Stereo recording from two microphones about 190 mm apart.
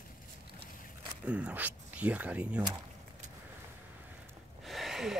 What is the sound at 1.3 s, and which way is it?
Speech, 5° right (ahead or behind).